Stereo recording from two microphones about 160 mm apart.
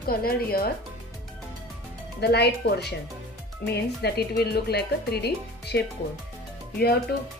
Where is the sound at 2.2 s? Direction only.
90° left.